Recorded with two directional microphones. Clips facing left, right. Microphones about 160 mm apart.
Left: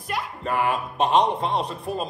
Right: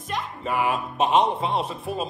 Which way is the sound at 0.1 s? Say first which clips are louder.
Left 1 dB; centre (ahead or behind).